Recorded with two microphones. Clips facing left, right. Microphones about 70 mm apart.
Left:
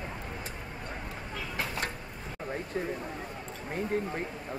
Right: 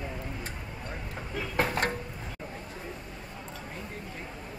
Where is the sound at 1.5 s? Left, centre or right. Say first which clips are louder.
Right 7 dB; right.